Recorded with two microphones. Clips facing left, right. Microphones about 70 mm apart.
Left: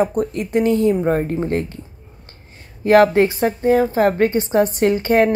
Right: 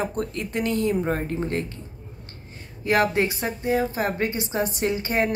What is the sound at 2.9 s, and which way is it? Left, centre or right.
A woman's voice, left.